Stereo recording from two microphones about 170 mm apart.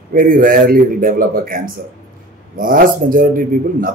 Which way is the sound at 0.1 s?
55° right (ahead or behind).